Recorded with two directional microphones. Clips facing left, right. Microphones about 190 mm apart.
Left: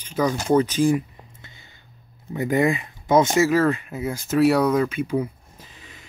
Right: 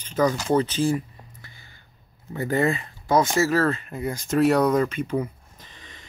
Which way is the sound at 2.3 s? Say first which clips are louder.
Left 2 dB; 15° left (ahead or behind).